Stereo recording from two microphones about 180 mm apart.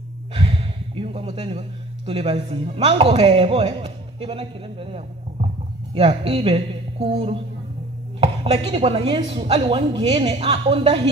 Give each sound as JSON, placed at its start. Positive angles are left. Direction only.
{"t": 0.3, "sound": "a woman's voice", "side_deg": -30}